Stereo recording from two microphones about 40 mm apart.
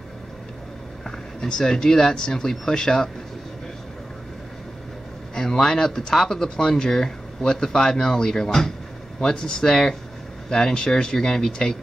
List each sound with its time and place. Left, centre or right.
1.0 s speech: centre
5.3 s a sound: centre
5.6 s speech: centre